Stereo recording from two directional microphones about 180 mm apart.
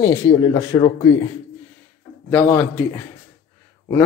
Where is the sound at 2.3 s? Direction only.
10° left (ahead or behind).